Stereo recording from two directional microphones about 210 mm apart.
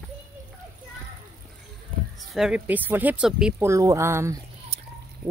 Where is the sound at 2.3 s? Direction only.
5° right (ahead or behind).